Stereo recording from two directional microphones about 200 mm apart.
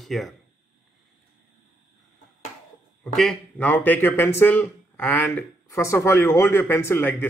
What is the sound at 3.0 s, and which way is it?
Speech, centre (ahead or behind).